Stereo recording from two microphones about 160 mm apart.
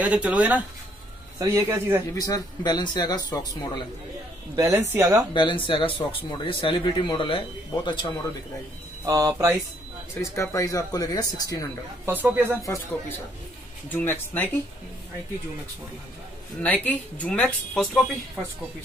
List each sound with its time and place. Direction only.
0.0 s speech: 10° right (ahead or behind)
2.1 s speech: 25° left (ahead or behind)
4.6 s speech: 15° right (ahead or behind)
5.3 s speech: 30° left (ahead or behind)
9.0 s speech: 20° right (ahead or behind)
10.2 s speech: 20° left (ahead or behind)
12.1 s speech: 10° right (ahead or behind)
13.9 s speech: 10° left (ahead or behind)
16.6 s speech: 10° left (ahead or behind)